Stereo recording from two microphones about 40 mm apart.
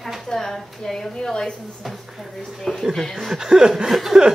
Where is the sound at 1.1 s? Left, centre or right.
Centre.